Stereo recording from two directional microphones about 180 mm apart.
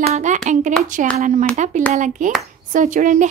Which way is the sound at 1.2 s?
45° right (ahead or behind).